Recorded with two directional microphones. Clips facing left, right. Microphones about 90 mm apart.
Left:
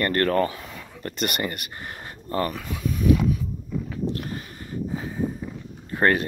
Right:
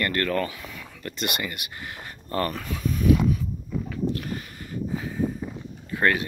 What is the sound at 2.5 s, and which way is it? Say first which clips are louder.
Speech: even; 5° left (ahead or behind).